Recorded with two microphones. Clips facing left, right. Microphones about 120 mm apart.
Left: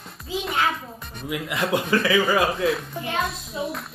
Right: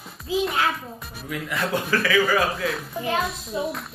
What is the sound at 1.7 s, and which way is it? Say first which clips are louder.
Speech: left 1 dB; 25° left (ahead or behind).